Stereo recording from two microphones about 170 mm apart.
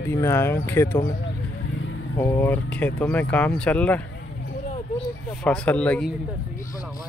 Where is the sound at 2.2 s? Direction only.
15° left (ahead or behind).